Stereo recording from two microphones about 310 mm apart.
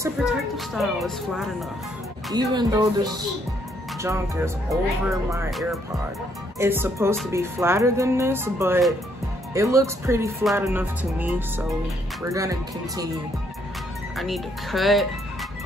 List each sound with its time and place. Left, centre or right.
0.2 s speech: centre
2.3 s speech: centre
14.1 s speech: centre